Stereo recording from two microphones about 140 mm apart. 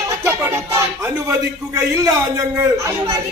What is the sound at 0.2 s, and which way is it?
Speech, 15° right (ahead or behind).